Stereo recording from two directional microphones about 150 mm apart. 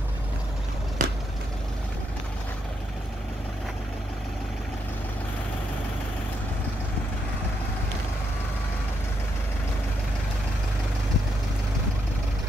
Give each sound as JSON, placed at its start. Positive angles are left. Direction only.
{"t": 1.0, "sound": "vehicle", "side_deg": -60}